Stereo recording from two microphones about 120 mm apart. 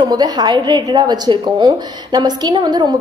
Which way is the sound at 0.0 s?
35° right (ahead or behind).